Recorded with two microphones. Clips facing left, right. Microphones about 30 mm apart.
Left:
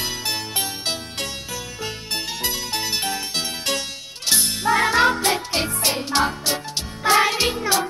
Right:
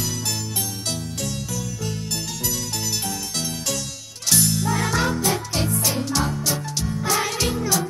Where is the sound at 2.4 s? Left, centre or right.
Left.